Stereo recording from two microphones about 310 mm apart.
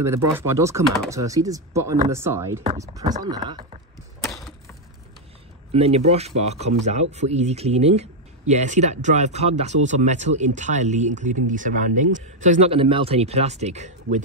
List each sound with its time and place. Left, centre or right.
0.3 s speech: centre
4.2 s a sound: centre
5.7 s speech: centre